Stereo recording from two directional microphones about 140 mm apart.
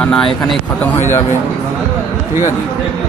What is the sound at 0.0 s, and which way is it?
Speech, 5° left (ahead or behind).